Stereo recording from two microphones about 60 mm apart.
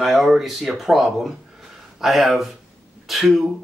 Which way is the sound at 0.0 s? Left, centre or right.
Centre.